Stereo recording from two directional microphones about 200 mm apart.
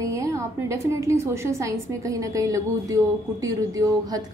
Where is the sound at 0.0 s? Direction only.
15° right (ahead or behind).